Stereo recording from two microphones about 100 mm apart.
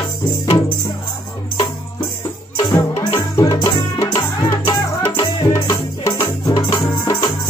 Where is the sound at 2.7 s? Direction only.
30° left (ahead or behind).